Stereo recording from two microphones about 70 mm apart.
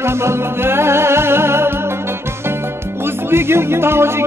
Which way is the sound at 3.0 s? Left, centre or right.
Right.